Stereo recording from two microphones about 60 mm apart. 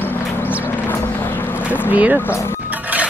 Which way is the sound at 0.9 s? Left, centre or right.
Left.